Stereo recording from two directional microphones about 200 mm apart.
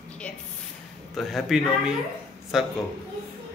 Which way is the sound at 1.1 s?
Centre (ahead or behind).